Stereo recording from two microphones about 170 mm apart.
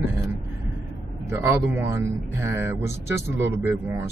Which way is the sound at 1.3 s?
10° right (ahead or behind).